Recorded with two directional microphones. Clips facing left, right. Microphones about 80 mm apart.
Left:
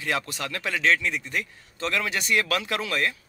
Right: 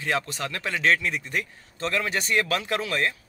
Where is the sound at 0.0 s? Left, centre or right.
Right.